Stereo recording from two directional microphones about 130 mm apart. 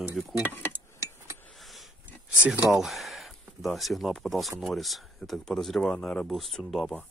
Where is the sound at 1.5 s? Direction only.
Centre (ahead or behind).